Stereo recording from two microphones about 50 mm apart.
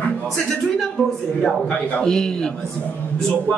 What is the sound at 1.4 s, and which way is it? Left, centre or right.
A man's voice, centre.